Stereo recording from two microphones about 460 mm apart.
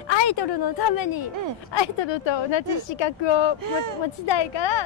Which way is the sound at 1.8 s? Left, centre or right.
Left.